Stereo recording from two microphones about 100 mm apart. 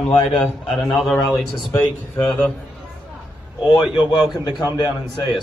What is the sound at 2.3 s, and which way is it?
Speech, 10° left (ahead or behind).